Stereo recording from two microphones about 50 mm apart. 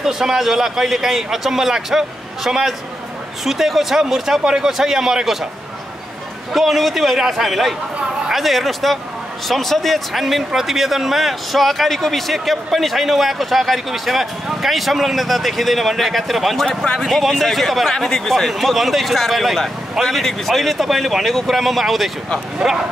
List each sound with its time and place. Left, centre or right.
0.0 s a man's voice: centre
6.5 s speech: centre
16.6 s speech: centre
17.0 s speech: centre
18.5 s speech: centre
22.6 s a man's voice: centre